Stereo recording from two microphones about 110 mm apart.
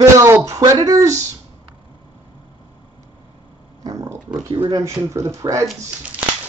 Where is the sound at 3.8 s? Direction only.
30° right (ahead or behind).